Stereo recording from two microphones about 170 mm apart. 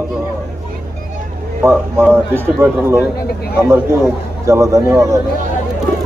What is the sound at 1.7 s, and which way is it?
Speech, 15° right (ahead or behind).